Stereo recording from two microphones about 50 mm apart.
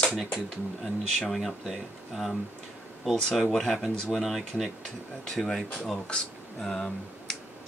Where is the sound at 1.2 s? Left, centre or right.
Centre.